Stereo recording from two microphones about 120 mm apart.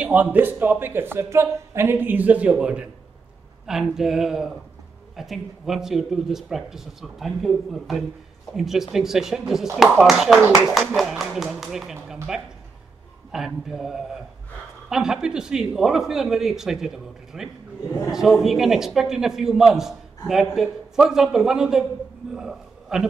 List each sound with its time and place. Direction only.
0.0 s a man's voice: 15° right (ahead or behind)